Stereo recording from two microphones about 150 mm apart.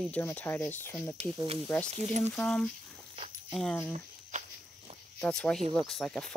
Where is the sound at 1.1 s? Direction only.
40° right (ahead or behind).